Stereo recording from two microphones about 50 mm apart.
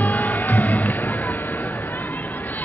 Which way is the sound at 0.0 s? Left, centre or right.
Left.